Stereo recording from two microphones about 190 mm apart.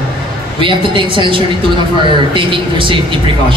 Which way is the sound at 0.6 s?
25° right (ahead or behind).